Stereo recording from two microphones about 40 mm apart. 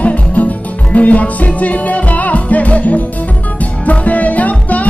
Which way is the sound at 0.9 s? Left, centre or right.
Left.